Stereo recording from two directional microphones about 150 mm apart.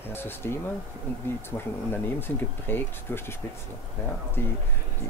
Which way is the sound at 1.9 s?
15° left (ahead or behind).